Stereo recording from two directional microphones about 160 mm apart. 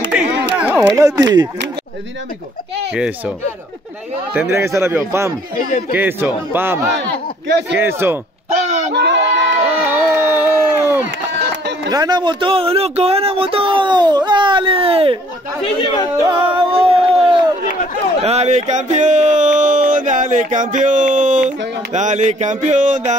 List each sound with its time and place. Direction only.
0.1 s a sound: 5° right (ahead or behind)
0.9 s speech: 20° right (ahead or behind)
4.3 s a man's voice: 15° right (ahead or behind)
7.0 s speech: 90° right
7.8 s a man's voice: 15° right (ahead or behind)
8.9 s speech: 90° right
9.8 s crowd: 15° right (ahead or behind)
11.9 s speech: 25° right (ahead or behind)
16.3 s music: 35° right (ahead or behind)
18.2 s a sound: 40° right (ahead or behind)